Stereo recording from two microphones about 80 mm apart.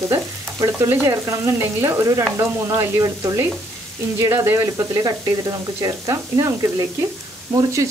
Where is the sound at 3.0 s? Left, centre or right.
Right.